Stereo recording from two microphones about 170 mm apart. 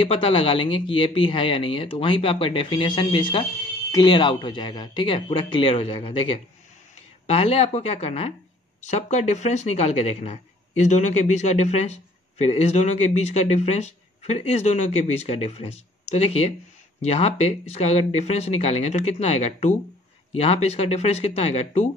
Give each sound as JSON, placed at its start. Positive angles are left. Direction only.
{"t": 0.0, "sound": "speech", "side_deg": 30}